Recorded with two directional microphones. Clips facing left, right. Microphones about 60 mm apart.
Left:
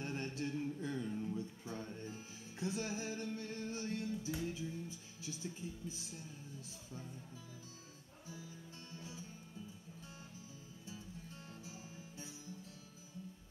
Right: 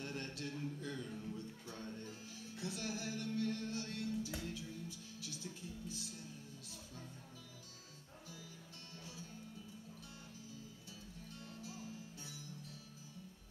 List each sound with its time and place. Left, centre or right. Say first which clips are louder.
0.0 s music: left 4 dB; left
11.5 s music: right 6 dB; left